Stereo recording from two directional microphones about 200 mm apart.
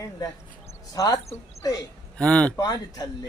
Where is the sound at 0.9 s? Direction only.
15° left (ahead or behind).